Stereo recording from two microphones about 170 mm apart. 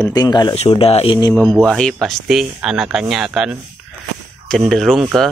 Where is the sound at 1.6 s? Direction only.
5° left (ahead or behind).